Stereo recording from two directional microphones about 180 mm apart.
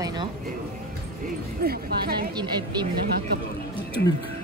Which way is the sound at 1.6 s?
55° right (ahead or behind).